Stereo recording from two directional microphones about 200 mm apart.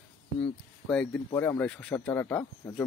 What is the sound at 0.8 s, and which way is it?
Speech, 5° left (ahead or behind).